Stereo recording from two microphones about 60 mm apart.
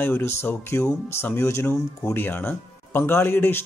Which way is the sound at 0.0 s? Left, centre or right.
Left.